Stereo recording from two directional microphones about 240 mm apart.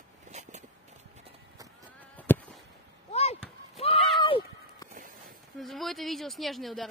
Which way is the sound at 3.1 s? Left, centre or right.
Left.